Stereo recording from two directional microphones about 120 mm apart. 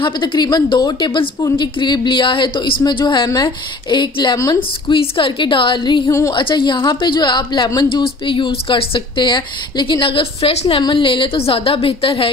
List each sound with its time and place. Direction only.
0.0 s a woman's voice: 45° left (ahead or behind)
6.0 s a woman's voice: 25° left (ahead or behind)
6.3 s a woman's voice: 45° left (ahead or behind); by 10.8 s 60° left (ahead or behind)
10.8 s a woman's voice: 40° left (ahead or behind)